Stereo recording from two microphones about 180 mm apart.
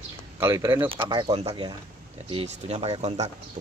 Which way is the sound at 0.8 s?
25° right (ahead or behind).